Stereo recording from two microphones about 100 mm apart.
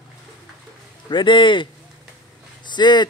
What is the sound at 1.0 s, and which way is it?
Speech, 55° left (ahead or behind).